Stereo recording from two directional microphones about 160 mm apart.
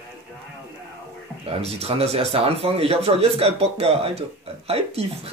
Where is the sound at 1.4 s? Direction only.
40° right (ahead or behind).